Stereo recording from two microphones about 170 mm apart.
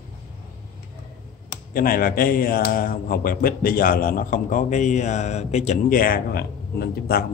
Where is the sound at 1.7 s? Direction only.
55° left (ahead or behind).